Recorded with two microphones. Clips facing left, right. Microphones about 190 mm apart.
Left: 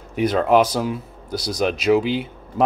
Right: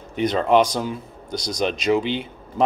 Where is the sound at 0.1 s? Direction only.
5° left (ahead or behind).